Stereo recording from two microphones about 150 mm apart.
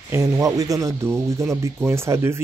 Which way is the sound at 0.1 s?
20° right (ahead or behind).